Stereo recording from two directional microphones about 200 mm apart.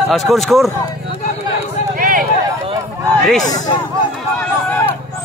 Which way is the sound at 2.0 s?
45° right (ahead or behind).